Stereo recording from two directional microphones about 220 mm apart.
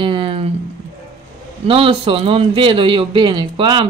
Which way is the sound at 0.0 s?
20° right (ahead or behind).